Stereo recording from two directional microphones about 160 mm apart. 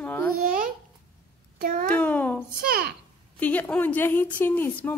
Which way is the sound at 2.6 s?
75° right (ahead or behind).